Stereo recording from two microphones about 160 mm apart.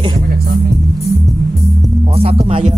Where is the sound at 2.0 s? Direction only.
40° right (ahead or behind).